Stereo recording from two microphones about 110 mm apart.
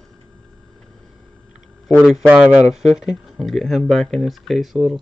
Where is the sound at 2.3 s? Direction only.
15° right (ahead or behind).